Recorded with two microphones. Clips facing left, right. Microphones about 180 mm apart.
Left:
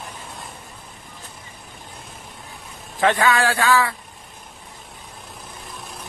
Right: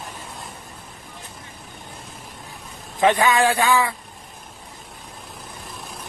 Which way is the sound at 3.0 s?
20° right (ahead or behind).